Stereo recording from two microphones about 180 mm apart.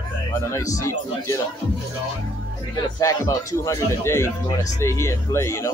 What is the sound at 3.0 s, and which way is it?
Speech, 15° left (ahead or behind).